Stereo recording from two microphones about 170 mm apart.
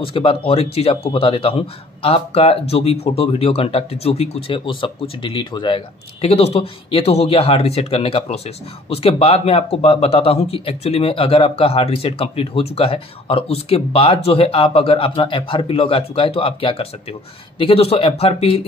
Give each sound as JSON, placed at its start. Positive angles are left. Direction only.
{"t": 0.0, "sound": "speech", "side_deg": 30}